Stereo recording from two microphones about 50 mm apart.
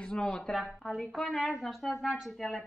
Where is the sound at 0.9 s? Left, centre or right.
Centre.